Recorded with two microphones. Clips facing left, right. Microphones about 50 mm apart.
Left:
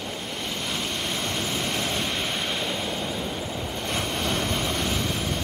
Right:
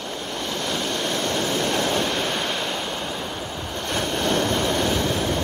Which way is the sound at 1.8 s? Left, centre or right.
Right.